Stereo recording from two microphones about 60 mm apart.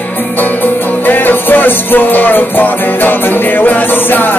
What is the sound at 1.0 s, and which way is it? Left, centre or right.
Music, left.